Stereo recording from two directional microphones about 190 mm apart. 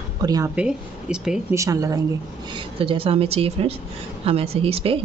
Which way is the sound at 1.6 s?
15° right (ahead or behind).